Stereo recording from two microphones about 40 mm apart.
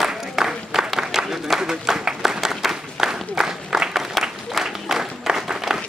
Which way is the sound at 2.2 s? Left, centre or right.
Centre.